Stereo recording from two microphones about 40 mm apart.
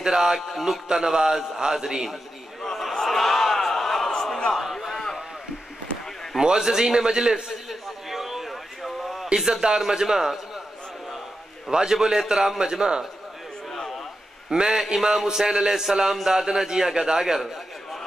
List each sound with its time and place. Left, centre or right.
0.0 s a man's voice: centre
0.5 s music: centre
0.8 s a man's voice: centre
2.6 s a sound: centre
6.4 s a man's voice: centre
8.1 s a sound: centre
9.4 s a man's voice: centre
11.7 s a man's voice: centre
14.5 s a man's voice: centre